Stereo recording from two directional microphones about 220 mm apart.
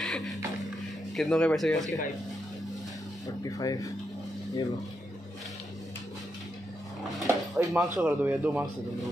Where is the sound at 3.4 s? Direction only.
15° left (ahead or behind).